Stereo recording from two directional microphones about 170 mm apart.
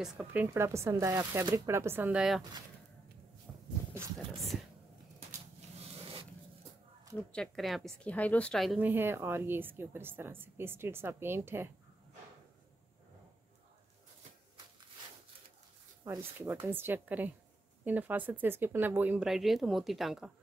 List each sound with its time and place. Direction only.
0.0 s a woman's voice: 5° right (ahead or behind)
3.5 s a sound: centre (ahead or behind)
5.6 s a sound: 35° right (ahead or behind)
7.2 s speech: centre (ahead or behind)
8.8 s a woman's voice: 10° right (ahead or behind)
16.0 s a woman's voice: 15° right (ahead or behind); by 20.2 s centre (ahead or behind)